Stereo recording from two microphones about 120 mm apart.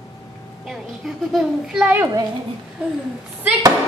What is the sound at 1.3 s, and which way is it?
Speech, 5° right (ahead or behind).